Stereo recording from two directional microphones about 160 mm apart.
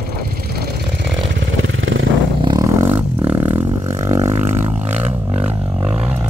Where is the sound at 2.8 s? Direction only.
15° right (ahead or behind).